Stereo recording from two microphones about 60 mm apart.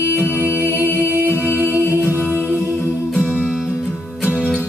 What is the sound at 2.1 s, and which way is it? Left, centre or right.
Music, left.